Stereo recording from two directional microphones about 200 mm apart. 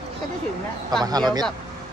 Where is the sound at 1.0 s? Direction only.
20° right (ahead or behind).